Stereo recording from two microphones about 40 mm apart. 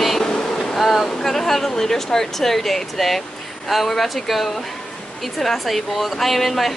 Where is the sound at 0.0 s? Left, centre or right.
Centre.